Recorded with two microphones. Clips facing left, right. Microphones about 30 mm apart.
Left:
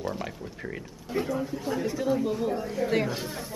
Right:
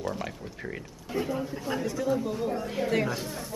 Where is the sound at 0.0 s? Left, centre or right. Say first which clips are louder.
Even; centre.